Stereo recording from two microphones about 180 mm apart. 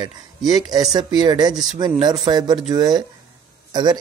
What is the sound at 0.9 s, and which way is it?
A man's voice, 20° right (ahead or behind).